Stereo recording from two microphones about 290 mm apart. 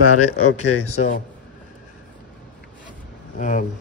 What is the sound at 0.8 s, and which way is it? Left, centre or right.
Speech, left.